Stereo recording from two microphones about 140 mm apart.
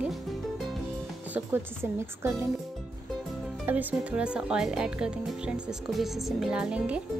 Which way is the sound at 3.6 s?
10° right (ahead or behind).